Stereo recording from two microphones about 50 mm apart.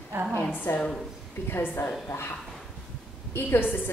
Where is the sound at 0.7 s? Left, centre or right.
Left.